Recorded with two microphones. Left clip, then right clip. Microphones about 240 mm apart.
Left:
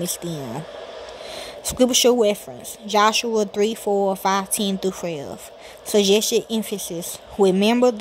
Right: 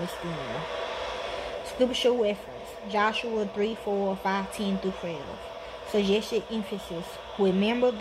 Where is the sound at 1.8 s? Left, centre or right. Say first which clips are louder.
Left 8 dB; left.